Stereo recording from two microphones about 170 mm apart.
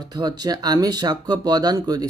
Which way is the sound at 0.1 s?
25° right (ahead or behind).